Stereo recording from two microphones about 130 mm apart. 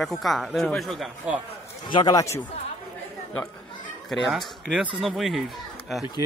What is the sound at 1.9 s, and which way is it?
Speech, 35° left (ahead or behind).